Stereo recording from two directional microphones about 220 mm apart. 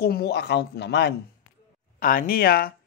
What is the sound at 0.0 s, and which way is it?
Speech, 45° left (ahead or behind).